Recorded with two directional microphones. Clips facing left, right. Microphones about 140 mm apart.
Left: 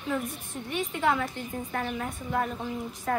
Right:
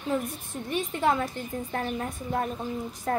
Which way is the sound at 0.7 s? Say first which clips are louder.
Right 1 dB; 40° right (ahead or behind).